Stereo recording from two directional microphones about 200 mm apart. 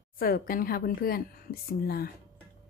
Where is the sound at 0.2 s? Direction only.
45° left (ahead or behind).